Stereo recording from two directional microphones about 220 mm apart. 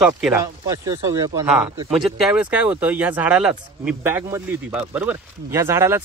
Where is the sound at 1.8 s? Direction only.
5° right (ahead or behind).